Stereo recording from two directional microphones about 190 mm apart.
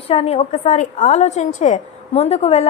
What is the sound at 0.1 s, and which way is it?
A woman's voice, 35° left (ahead or behind).